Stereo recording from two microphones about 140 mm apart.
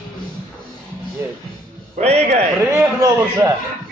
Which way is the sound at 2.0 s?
50° right (ahead or behind).